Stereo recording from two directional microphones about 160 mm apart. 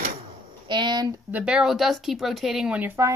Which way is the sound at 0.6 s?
30° right (ahead or behind).